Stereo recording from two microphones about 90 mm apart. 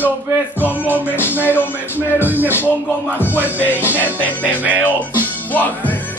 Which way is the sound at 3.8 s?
20° right (ahead or behind).